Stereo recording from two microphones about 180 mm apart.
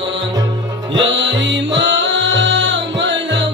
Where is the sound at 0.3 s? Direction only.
25° right (ahead or behind).